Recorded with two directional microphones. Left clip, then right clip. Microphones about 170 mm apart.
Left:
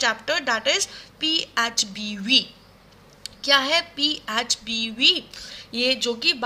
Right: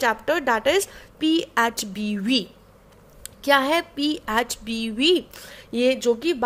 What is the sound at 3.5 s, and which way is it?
A woman's voice, 60° right (ahead or behind).